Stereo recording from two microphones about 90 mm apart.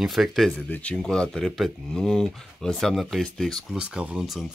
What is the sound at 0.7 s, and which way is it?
Speech, 15° left (ahead or behind).